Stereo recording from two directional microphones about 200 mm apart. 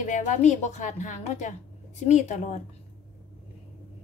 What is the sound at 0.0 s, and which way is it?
A woman's voice, 35° left (ahead or behind).